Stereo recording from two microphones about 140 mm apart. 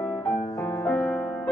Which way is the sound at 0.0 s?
5° left (ahead or behind).